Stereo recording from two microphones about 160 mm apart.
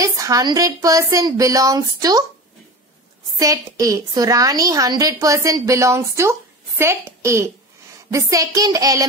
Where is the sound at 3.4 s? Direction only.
20° right (ahead or behind).